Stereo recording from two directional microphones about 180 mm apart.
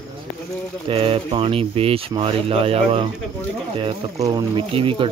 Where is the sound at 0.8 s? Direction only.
30° right (ahead or behind).